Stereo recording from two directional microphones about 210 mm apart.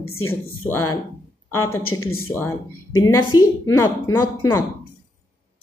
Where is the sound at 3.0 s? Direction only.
20° left (ahead or behind).